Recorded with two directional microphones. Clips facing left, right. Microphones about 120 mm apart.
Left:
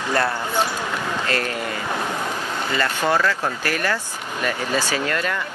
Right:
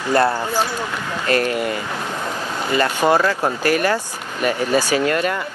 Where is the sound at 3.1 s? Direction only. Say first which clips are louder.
Right 3 dB; 40° right (ahead or behind).